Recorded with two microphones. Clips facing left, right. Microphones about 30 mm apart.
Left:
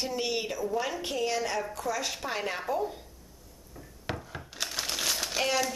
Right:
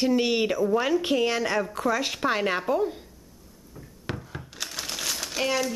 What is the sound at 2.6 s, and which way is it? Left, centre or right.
Speech, centre.